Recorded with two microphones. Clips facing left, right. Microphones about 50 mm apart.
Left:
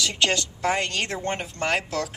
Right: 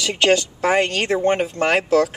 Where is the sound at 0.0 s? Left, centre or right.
Right.